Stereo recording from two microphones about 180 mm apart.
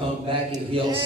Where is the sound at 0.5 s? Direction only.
30° right (ahead or behind).